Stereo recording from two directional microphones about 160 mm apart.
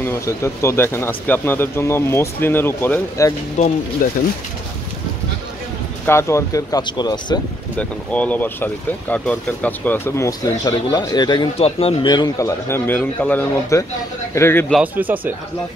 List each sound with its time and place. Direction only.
0.0 s speech: 15° left (ahead or behind)
3.6 s speech: 50° left (ahead or behind)
4.0 s speech: 60° left (ahead or behind)
6.0 s speech: 15° left (ahead or behind)
7.7 s speech: 10° left (ahead or behind); by 11.4 s 25° left (ahead or behind)
11.5 s speech: 35° left (ahead or behind); by 14.7 s 15° left (ahead or behind)
14.8 s speech: 10° right (ahead or behind)